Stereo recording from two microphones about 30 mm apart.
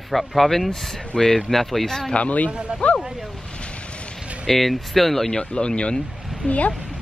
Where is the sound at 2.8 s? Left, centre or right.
Left.